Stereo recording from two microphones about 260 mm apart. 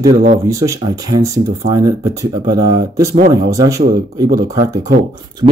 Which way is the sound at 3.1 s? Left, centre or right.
Right.